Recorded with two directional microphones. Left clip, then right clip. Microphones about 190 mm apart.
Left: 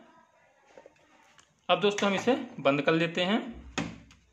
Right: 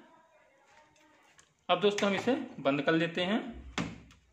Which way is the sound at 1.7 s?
10° left (ahead or behind).